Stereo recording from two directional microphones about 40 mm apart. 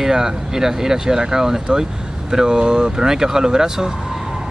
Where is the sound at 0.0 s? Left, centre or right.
Centre.